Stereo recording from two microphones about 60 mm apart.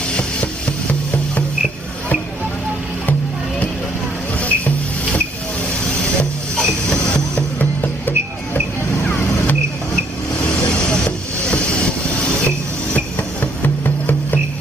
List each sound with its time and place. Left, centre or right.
4.4 s music: left
6.5 s a sound: centre
12.9 s music: left